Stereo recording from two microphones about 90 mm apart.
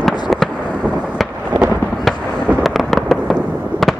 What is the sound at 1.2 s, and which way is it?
Thunder, centre (ahead or behind).